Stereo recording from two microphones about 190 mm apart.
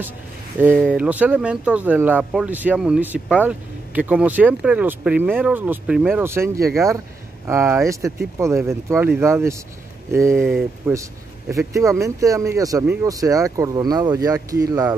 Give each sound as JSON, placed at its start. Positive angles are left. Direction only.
{"t": 0.9, "sound": "speech", "side_deg": -5}